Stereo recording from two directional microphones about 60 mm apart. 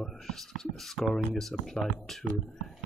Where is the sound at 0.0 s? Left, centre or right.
Centre.